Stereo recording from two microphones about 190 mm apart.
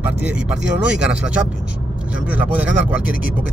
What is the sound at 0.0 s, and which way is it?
Speech, 5° right (ahead or behind).